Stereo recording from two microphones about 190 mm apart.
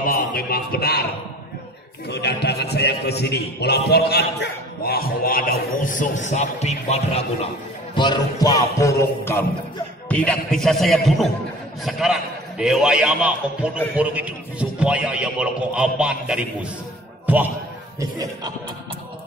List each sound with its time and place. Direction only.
0.0 s speech: 50° left (ahead or behind)
2.0 s speech: 60° left (ahead or behind); by 7.2 s 35° left (ahead or behind)
7.9 s music: 25° left (ahead or behind)
10.0 s a man's voice: 5° left (ahead or behind); by 18.5 s 20° right (ahead or behind)